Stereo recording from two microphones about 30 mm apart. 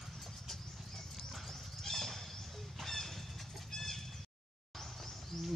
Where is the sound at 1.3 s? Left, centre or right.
Centre.